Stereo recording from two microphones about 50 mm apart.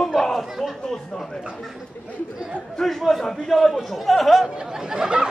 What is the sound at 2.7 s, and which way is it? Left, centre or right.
Speech, centre.